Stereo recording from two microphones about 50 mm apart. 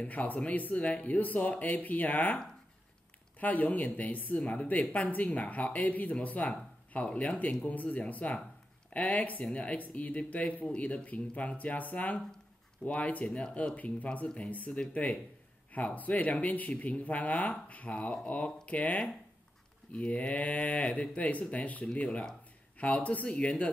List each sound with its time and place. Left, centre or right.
0.0 s speech: left
3.3 s speech: left
13.7 s speech: left